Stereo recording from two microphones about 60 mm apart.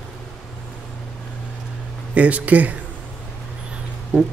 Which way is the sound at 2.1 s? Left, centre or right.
Right.